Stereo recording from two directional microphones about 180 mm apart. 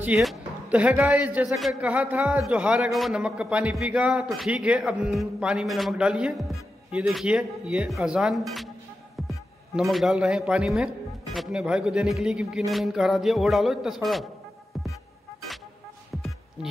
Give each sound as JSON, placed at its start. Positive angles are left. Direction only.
{"t": 0.0, "sound": "a man's voice", "side_deg": 0}
{"t": 9.8, "sound": "a man's voice", "side_deg": 0}